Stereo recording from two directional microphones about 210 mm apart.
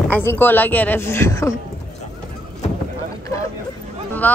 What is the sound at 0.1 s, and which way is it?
Speech, 10° left (ahead or behind).